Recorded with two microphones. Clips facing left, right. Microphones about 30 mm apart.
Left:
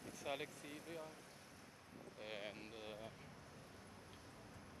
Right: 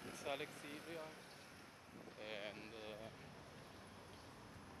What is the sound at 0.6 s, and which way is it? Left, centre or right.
Speech, right.